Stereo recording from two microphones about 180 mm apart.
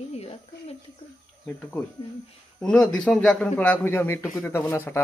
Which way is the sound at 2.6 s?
5° left (ahead or behind).